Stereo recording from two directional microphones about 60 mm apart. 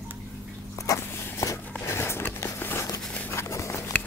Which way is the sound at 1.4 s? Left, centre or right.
Left.